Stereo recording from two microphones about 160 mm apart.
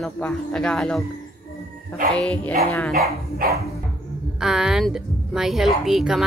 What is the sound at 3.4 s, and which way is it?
Dog, 75° right (ahead or behind).